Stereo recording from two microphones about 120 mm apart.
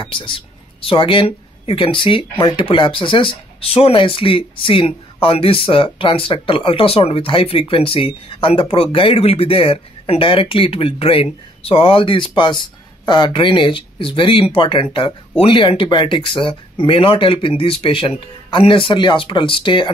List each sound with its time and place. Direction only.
0.0 s speech: 45° left (ahead or behind)